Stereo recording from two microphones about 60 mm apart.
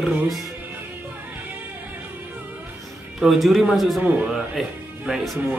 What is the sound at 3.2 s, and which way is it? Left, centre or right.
Speech, centre.